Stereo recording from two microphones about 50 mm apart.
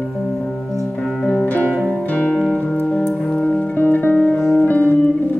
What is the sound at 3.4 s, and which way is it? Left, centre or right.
Music, left.